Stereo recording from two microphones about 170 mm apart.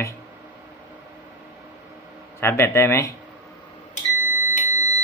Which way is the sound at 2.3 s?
15° left (ahead or behind).